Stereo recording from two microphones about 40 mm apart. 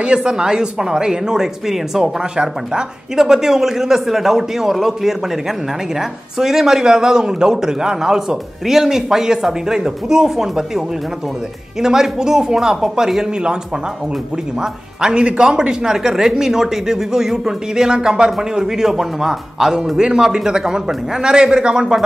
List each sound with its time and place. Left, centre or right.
0.0 s a man's voice: right
2.1 s a man's voice: right
11.8 s a man's voice: centre
14.6 s a man's voice: centre
18.7 s a man's voice: centre